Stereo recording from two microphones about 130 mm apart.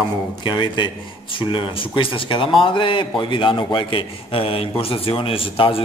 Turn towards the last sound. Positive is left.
turn(degrees=45)  # may be behind; listen again after turning